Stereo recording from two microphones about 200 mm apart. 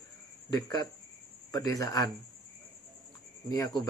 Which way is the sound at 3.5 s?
20° left (ahead or behind).